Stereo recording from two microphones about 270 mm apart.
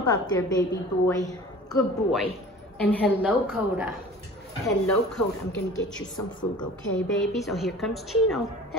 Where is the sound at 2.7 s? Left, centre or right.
Centre.